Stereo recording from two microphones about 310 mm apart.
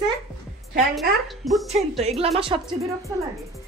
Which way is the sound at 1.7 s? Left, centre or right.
Right.